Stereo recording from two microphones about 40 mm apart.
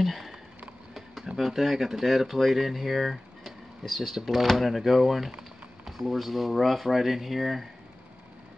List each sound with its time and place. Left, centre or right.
0.0 s sniff: centre
0.9 s a sound: centre
1.4 s speech: centre